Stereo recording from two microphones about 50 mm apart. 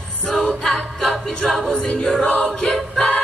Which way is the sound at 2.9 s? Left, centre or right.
Centre.